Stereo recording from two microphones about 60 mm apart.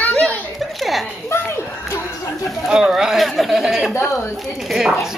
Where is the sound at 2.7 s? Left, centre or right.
Centre.